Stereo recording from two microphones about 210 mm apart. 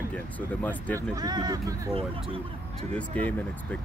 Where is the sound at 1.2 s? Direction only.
20° right (ahead or behind).